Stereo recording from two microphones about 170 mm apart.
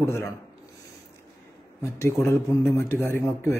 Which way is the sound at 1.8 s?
15° left (ahead or behind).